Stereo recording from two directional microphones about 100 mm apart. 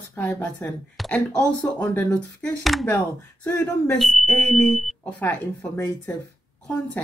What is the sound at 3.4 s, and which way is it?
Speech, 15° left (ahead or behind).